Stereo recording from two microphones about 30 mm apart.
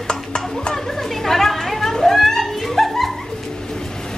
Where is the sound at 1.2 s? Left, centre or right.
Centre.